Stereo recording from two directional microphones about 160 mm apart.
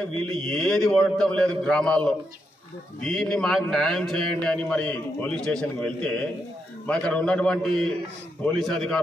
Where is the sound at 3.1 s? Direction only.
Centre (ahead or behind).